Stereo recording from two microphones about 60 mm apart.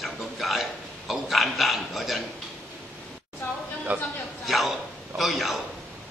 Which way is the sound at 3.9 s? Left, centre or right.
Right.